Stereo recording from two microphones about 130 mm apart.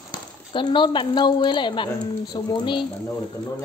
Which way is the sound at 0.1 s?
35° left (ahead or behind).